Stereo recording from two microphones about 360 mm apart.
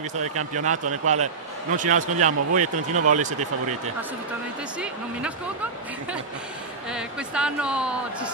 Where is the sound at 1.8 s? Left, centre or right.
Right.